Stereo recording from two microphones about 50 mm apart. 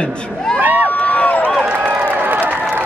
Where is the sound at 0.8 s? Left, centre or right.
Left.